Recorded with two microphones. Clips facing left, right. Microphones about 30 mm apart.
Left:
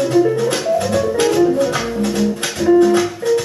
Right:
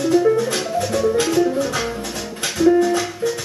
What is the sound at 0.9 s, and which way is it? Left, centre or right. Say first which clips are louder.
Music: right 1 dB; centre.